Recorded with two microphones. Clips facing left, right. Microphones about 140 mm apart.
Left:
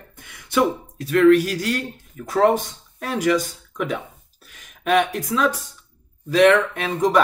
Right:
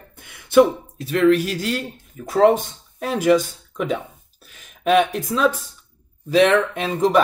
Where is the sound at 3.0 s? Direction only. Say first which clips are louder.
Right 3 dB; 25° right (ahead or behind).